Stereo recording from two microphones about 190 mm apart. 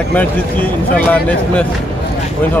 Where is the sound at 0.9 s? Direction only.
10° left (ahead or behind).